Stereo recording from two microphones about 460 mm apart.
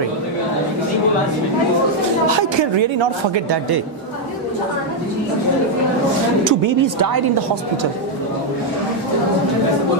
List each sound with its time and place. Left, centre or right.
2.2 s a woman's voice: right
6.4 s speech: right